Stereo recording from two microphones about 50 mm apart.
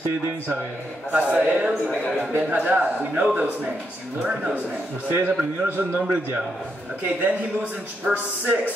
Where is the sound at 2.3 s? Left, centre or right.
Right.